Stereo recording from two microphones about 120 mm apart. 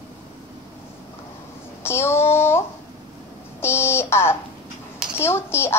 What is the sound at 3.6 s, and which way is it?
A woman's voice, 20° left (ahead or behind).